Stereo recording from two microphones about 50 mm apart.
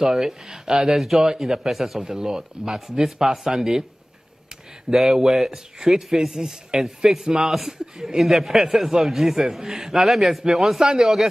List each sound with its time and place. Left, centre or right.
0.0 s speech: centre
4.9 s a man's voice: centre